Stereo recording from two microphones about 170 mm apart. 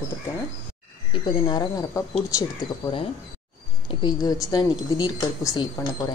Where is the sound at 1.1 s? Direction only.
25° left (ahead or behind).